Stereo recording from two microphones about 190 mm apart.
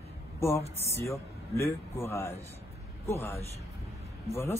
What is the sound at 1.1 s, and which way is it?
Speech, 15° left (ahead or behind).